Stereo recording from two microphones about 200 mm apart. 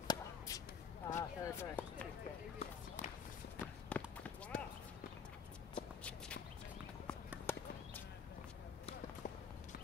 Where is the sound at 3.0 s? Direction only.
40° left (ahead or behind).